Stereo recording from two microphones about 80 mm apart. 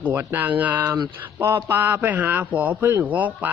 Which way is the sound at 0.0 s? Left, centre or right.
Right.